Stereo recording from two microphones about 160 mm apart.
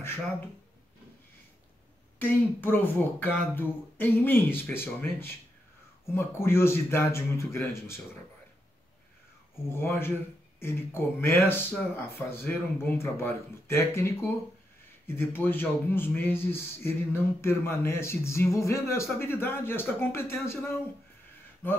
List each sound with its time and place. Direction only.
2.1 s a man's voice: 10° left (ahead or behind)
9.7 s a man's voice: 15° left (ahead or behind)